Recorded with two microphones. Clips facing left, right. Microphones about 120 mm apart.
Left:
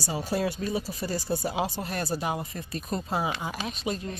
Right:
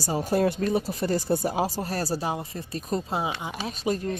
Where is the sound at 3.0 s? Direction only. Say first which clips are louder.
Even; 20° right (ahead or behind).